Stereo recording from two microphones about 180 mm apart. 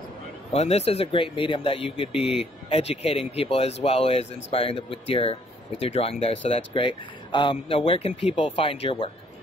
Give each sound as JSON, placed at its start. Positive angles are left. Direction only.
{"t": 0.5, "sound": "speech", "side_deg": 35}